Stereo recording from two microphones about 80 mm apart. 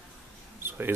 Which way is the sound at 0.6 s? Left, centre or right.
Right.